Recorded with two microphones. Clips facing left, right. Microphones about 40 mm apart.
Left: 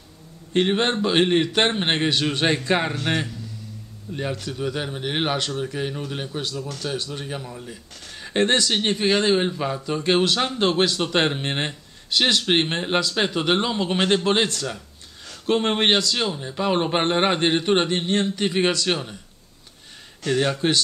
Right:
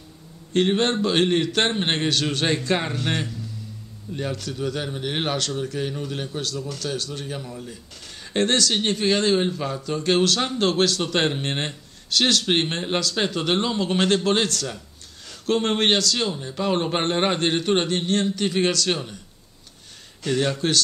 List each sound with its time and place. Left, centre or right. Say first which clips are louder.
0.5 s speech: even; centre
20.2 s speech: left 1 dB; centre